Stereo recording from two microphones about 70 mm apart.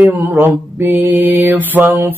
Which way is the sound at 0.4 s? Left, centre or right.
Right.